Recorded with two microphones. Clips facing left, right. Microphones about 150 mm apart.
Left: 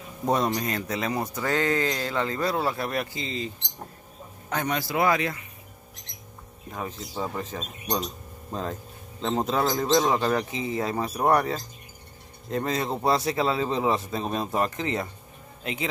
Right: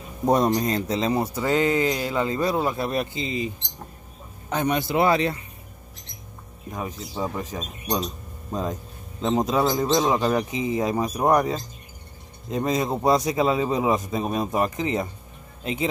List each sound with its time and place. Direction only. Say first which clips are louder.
0.2 s speech: right 5 dB; 40° right (ahead or behind)
6.7 s a man's voice: right 2 dB; 10° right (ahead or behind)